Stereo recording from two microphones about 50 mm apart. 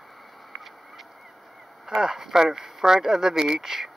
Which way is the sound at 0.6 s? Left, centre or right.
Centre.